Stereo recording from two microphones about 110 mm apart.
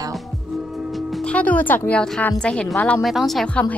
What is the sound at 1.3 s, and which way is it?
Speech, 15° left (ahead or behind).